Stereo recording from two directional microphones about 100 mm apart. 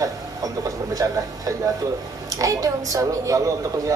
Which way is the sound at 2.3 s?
35° right (ahead or behind).